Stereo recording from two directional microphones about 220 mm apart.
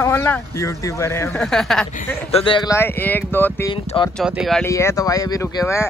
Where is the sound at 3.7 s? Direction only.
25° left (ahead or behind).